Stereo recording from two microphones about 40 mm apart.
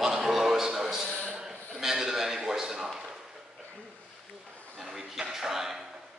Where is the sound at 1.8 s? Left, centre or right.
Centre.